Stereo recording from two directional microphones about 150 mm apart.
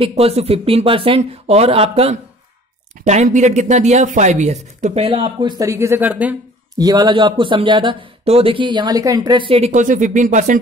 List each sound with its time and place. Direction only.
0.0 s speech: 45° right (ahead or behind)
5.2 s speech: 30° right (ahead or behind)
5.7 s speech: 20° right (ahead or behind)
6.8 s speech: 25° right (ahead or behind); by 10.6 s 55° right (ahead or behind)